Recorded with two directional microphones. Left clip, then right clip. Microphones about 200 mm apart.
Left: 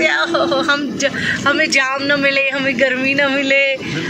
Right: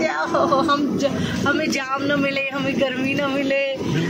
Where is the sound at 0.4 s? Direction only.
15° left (ahead or behind).